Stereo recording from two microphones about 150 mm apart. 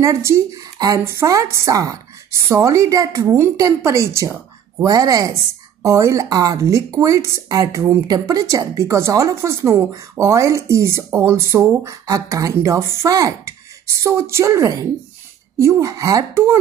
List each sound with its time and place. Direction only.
0.0 s speech: 20° right (ahead or behind)